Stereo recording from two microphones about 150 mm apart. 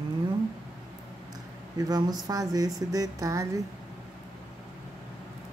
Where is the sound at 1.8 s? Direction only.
25° right (ahead or behind).